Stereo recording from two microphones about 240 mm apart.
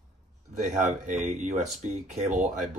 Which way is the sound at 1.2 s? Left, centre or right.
Right.